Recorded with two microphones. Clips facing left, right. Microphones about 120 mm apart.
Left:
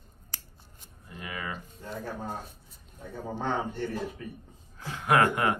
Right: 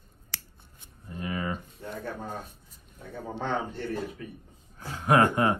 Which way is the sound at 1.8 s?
50° right (ahead or behind).